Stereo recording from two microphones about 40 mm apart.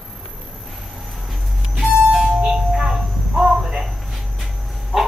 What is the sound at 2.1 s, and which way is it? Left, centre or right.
Music, centre.